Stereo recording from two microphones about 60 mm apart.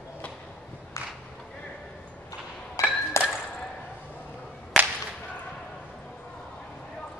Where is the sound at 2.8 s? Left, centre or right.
Left.